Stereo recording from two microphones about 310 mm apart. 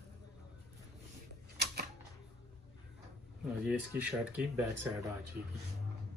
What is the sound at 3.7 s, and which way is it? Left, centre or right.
Speech, centre.